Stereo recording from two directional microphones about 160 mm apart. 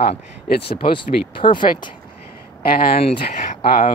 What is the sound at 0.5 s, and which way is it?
Speech, 85° left.